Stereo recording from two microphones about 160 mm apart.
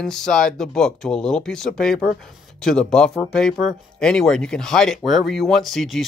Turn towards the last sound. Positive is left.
turn(degrees=0)  # may be behind; listen again after turning